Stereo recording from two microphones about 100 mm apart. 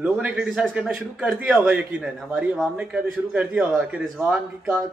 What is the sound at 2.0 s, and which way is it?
Speech, 5° right (ahead or behind).